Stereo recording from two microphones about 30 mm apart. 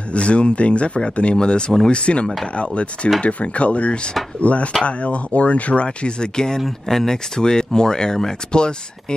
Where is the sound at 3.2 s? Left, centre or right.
Left.